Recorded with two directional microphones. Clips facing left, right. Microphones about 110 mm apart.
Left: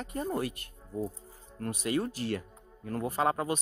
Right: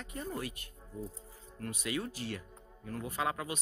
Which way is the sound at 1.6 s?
40° left (ahead or behind).